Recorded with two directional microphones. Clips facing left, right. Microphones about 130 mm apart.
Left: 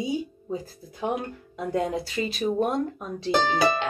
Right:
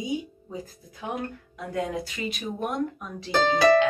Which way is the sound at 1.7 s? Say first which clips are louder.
Left 3 dB; 30° left (ahead or behind).